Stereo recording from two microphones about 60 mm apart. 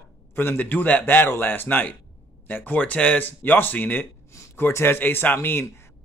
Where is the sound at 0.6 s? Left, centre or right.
Left.